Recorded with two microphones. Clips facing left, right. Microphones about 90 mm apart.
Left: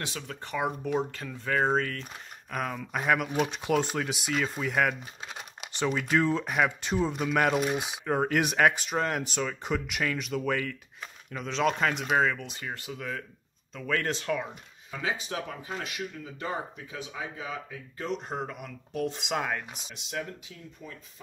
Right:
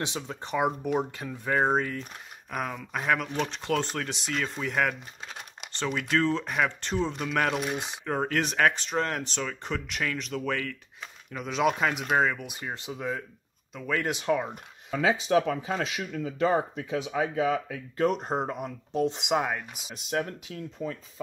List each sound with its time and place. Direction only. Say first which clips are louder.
0.0 s speech: right 4 dB; 20° right (ahead or behind); by 10.8 s 5° left (ahead or behind)
11.3 s speech: right 1 dB; 5° right (ahead or behind)
13.7 s speech: right 1 dB; 10° right (ahead or behind)
14.9 s speech: right 8 dB; 90° right; by 18.2 s 60° right (ahead or behind)
18.2 s speech: right 5 dB; 35° right (ahead or behind)
19.0 s speech: right 3 dB; 20° right (ahead or behind)
19.9 s speech: right 7 dB; 50° right (ahead or behind)
20.8 s speech: right 11 dB; 90° right